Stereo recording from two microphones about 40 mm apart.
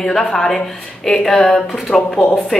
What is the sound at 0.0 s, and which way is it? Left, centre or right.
Speech, centre.